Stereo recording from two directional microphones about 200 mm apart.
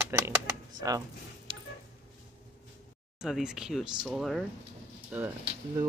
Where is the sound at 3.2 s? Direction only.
Centre (ahead or behind).